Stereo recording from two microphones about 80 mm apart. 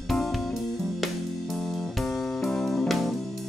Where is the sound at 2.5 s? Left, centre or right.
Centre.